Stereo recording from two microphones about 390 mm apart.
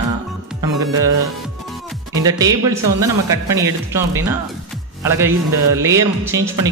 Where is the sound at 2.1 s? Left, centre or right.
Centre.